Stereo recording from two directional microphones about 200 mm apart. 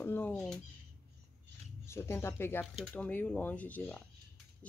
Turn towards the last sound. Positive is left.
turn(degrees=5)  # may be behind; listen again after turning